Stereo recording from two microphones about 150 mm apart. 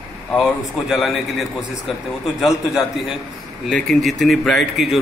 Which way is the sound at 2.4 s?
Centre (ahead or behind).